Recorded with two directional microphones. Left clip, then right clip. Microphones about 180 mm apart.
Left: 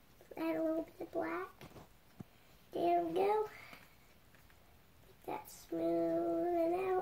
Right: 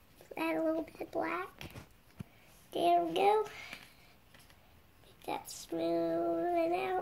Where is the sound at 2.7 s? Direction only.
15° left (ahead or behind).